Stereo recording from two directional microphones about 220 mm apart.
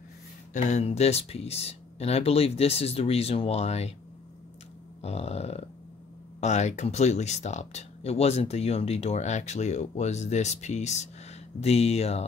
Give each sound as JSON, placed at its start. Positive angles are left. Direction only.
{"t": 0.5, "sound": "speech", "side_deg": 35}
{"t": 5.0, "sound": "speech", "side_deg": 30}